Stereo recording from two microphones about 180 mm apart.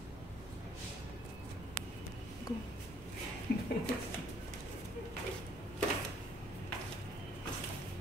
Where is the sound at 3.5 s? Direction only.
60° left (ahead or behind).